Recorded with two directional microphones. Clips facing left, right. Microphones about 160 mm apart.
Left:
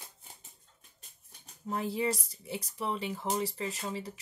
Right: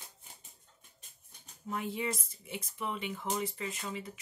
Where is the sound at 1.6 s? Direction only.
35° left (ahead or behind).